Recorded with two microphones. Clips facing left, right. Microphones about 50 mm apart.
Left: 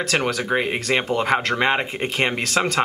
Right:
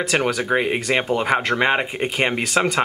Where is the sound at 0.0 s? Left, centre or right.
Centre.